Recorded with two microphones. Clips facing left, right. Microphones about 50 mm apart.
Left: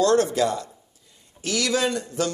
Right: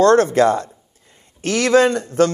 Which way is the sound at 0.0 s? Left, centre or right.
Right.